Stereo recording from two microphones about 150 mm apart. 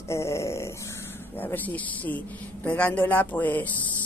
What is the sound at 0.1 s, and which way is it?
A woman's voice, 20° left (ahead or behind).